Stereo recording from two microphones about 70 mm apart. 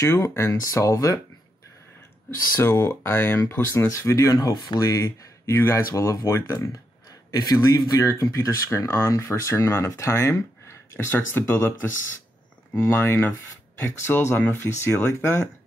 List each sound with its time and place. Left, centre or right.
0.0 s speech: left
2.6 s speech: left